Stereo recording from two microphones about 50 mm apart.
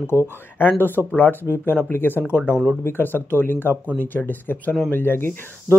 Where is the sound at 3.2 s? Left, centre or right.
Left.